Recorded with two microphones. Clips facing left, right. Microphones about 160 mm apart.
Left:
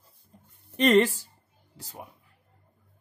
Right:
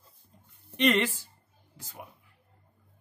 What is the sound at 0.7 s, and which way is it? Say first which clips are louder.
Speech: left 5 dB; 40° left (ahead or behind).